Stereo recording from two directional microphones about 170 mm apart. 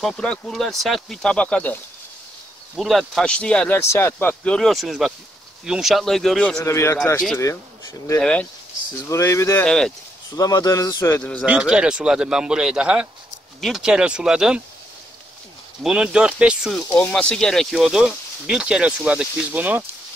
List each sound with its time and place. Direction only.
0.0 s speech: 5° left (ahead or behind)
6.6 s speech: 15° left (ahead or behind)
8.2 s speech: 5° left (ahead or behind)
9.1 s speech: 15° left (ahead or behind)
9.7 s speech: 5° left (ahead or behind)
10.3 s a man's voice: 20° left (ahead or behind)
11.4 s speech: 5° right (ahead or behind)
15.8 s speech: 5° right (ahead or behind)